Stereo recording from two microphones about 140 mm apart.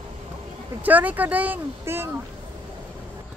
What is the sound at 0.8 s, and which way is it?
Speech, 10° right (ahead or behind).